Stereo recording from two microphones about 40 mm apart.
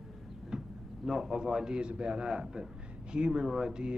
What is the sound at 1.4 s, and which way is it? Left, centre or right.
Speech, centre.